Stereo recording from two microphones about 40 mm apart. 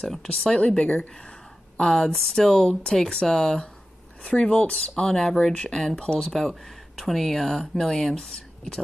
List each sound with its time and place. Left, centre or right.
0.1 s speech: centre
0.7 s speech: left
1.8 s speech: centre
4.6 s speech: left
5.0 s speech: centre
6.1 s speech: centre